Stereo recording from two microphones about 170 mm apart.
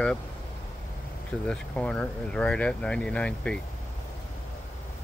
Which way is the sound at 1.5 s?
5° left (ahead or behind).